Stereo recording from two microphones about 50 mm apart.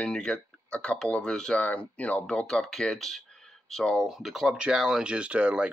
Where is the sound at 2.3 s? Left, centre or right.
Centre.